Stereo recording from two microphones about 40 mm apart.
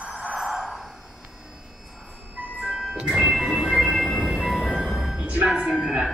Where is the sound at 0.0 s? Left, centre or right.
Right.